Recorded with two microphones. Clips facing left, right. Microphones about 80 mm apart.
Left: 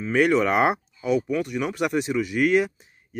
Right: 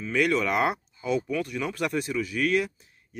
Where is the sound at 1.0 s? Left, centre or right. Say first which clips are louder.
Left 4 dB; centre.